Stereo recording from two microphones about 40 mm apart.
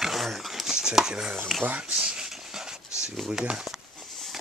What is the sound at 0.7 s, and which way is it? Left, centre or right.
Chopping, centre.